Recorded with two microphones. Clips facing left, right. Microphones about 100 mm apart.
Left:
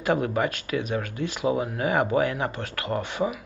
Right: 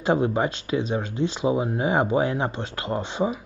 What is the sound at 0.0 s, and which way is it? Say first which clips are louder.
Speech: right 2 dB; 25° right (ahead or behind).